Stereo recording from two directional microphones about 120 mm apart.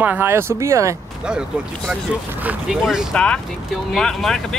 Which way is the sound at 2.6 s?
5° right (ahead or behind).